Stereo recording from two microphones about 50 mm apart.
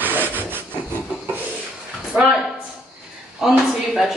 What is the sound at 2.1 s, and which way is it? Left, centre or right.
Speech, right.